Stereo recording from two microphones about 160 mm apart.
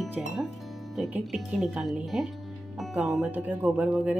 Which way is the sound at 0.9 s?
Centre (ahead or behind).